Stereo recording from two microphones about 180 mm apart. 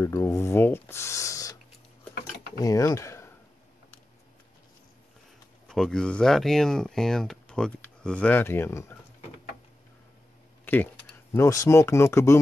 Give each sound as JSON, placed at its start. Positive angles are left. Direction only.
{"t": 0.0, "sound": "speech", "side_deg": 15}
{"t": 2.6, "sound": "speech", "side_deg": 20}
{"t": 5.7, "sound": "speech", "side_deg": 5}
{"t": 10.6, "sound": "a sound", "side_deg": 10}
{"t": 11.3, "sound": "speech", "side_deg": 15}